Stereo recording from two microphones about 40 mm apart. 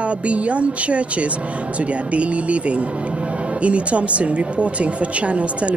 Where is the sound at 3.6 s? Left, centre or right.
Right.